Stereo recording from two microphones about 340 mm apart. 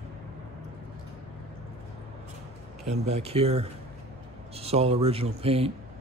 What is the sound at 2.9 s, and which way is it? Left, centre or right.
Speech, centre.